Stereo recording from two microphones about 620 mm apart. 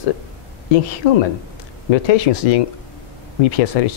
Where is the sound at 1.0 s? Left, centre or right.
Left.